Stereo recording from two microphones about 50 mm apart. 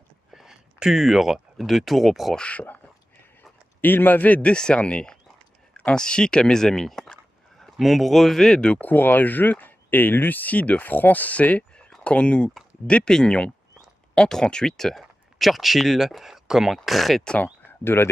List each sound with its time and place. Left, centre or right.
0.3 s speech: centre
2.3 s speech: left
3.8 s speech: left
4.4 s speech: centre
7.7 s speech: centre
8.8 s speech: left; by 17.2 s centre
17.8 s speech: left